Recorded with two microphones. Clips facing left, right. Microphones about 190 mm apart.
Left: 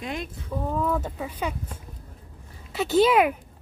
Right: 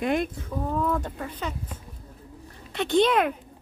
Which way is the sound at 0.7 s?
5° left (ahead or behind).